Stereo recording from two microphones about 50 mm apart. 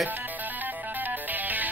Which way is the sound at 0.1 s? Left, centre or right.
Right.